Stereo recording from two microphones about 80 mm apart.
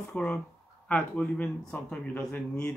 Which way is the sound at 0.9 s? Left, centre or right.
Left.